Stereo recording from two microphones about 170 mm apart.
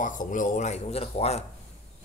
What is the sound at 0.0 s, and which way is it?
Speech, 50° left (ahead or behind).